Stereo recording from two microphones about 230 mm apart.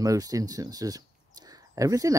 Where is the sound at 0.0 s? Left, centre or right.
Centre.